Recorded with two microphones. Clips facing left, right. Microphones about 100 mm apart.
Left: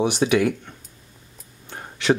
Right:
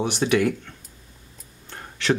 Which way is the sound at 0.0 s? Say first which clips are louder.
Left 2 dB; 5° left (ahead or behind).